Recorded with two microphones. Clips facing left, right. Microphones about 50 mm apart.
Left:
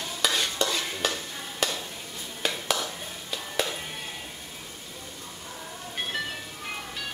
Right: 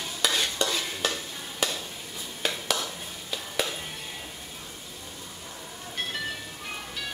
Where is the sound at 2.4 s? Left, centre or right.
Centre.